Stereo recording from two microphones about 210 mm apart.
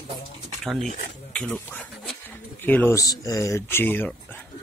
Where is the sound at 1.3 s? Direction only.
Centre (ahead or behind).